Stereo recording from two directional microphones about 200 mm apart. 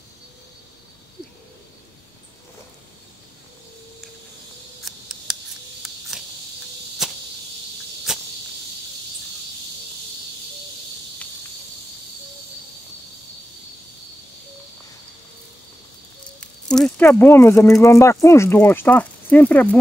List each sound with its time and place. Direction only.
4.8 s scissors: centre (ahead or behind)
7.0 s arrow: centre (ahead or behind)
8.1 s cricket: centre (ahead or behind)
16.3 s speech: 5° left (ahead or behind)